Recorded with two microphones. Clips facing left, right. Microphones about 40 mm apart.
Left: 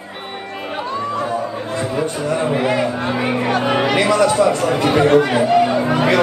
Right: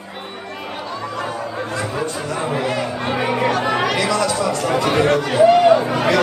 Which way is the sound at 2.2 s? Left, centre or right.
Left.